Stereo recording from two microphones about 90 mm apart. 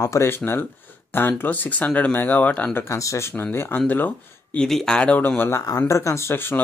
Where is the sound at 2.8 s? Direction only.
35° left (ahead or behind).